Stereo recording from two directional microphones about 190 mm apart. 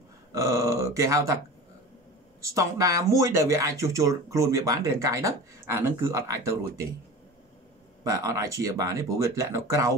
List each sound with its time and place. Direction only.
0.3 s speech: 15° right (ahead or behind)
2.4 s speech: 15° right (ahead or behind)
8.0 s speech: 15° right (ahead or behind)